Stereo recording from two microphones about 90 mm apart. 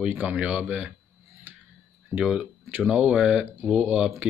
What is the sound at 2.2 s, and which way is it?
Speech, 5° right (ahead or behind).